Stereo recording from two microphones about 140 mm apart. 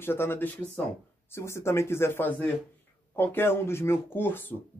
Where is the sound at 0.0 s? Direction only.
15° left (ahead or behind).